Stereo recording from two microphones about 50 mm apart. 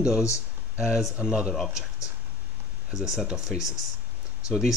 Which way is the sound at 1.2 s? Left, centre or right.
Centre.